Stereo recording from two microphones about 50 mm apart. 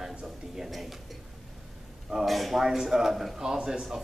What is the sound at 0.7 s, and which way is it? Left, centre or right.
Speech, centre.